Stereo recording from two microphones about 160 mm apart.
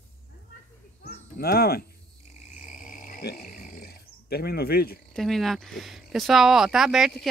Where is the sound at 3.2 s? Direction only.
70° left (ahead or behind).